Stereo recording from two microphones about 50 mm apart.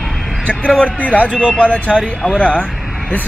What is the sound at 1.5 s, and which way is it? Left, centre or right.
Speech, left.